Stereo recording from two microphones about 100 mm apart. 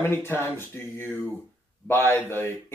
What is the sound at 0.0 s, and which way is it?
Speech, 25° left (ahead or behind).